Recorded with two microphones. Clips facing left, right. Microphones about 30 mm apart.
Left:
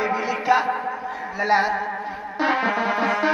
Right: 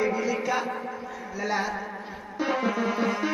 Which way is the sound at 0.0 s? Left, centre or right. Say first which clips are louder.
Left 3 dB; left.